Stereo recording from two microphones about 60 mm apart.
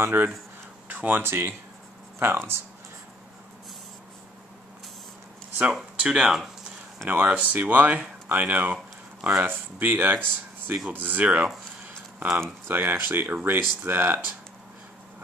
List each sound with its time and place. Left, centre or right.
0.0 s speech: right
5.7 s speech: centre
7.1 s speech: right
10.9 s a sound: right
12.4 s speech: right